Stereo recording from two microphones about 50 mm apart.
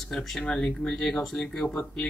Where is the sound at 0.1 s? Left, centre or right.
Centre.